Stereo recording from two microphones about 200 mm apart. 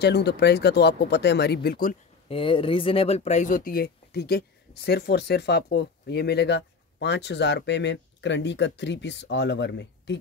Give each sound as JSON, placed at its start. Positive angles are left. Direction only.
{"t": 0.0, "sound": "speech", "side_deg": 55}
{"t": 2.2, "sound": "speech", "side_deg": 25}